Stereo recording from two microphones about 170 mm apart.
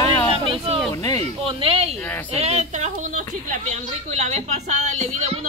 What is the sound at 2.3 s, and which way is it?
A woman's voice, 40° right (ahead or behind).